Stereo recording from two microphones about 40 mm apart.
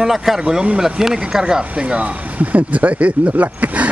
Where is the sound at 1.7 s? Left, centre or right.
Right.